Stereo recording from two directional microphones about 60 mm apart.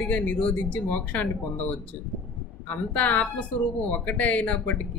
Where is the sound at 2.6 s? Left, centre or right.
Left.